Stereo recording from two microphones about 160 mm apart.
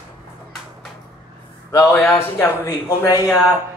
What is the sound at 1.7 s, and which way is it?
Speech, 20° left (ahead or behind).